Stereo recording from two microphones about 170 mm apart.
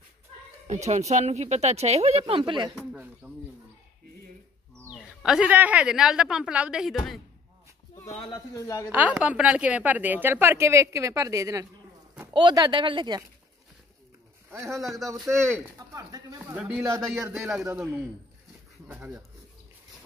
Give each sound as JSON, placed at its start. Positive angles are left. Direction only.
{"t": 0.8, "sound": "speech", "side_deg": -45}
{"t": 3.2, "sound": "speech", "side_deg": -5}
{"t": 4.7, "sound": "speech", "side_deg": 0}
{"t": 8.5, "sound": "a woman's voice", "side_deg": 20}
{"t": 8.9, "sound": "a woman's voice", "side_deg": -10}
{"t": 14.5, "sound": "a woman's voice", "side_deg": -15}